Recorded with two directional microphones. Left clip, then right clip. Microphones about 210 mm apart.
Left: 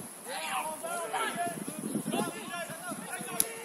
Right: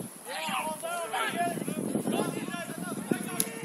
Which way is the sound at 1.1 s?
15° right (ahead or behind).